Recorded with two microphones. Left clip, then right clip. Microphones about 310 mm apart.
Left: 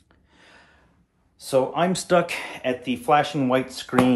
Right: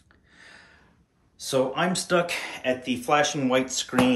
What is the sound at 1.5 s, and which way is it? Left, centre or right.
Speech, centre.